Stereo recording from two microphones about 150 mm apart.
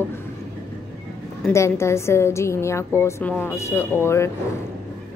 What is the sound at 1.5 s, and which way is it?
A woman's voice, 20° left (ahead or behind).